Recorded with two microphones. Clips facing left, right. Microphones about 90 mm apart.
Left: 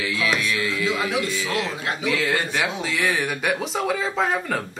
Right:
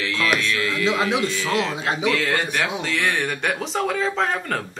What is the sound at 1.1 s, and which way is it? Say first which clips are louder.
Speech: right 2 dB; 20° right (ahead or behind).